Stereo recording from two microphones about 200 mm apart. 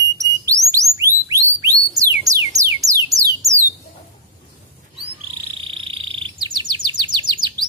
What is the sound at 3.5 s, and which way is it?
Bird, 35° right (ahead or behind).